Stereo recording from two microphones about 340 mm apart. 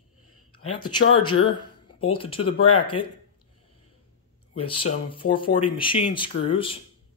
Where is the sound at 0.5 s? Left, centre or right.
Left.